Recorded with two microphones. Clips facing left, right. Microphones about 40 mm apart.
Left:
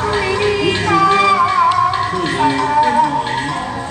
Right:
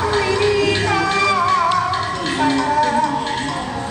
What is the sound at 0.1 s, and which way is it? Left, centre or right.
Music, centre.